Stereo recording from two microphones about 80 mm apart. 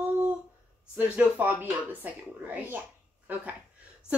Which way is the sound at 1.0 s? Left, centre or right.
Right.